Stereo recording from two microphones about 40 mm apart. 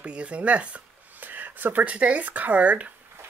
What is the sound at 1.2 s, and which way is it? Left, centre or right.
Speech, right.